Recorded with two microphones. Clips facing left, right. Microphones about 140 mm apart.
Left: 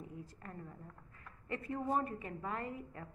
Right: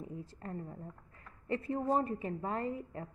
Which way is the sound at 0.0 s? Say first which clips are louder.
Right 5 dB; 30° right (ahead or behind).